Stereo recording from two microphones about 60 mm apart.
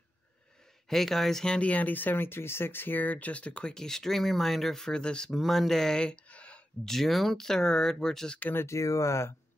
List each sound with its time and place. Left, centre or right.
0.8 s speech: centre
1.5 s speech: left
5.3 s speech: centre; by 6.6 s left
6.8 s speech: centre
8.4 s speech: left
8.6 s speech: left